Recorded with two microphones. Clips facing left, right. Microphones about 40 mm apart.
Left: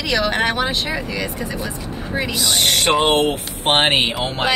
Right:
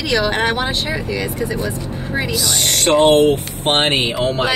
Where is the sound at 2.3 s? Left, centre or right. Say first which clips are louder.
Left 4 dB; left.